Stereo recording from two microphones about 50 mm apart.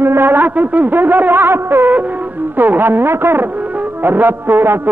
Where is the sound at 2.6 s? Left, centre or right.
Right.